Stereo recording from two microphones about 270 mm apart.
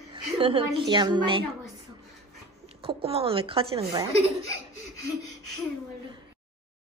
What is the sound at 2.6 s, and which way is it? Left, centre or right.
A woman's voice, right.